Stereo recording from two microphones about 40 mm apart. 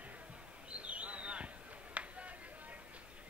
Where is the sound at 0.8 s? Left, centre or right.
Right.